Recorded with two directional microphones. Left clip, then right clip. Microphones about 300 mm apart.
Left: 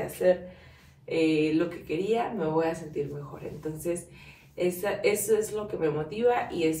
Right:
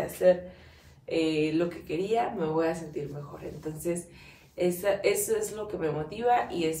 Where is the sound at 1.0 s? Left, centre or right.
Centre.